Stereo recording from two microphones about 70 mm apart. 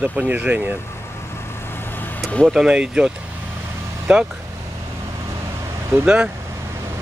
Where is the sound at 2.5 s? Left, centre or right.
Centre.